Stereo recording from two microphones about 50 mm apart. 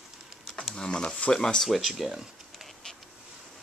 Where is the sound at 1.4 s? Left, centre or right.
Centre.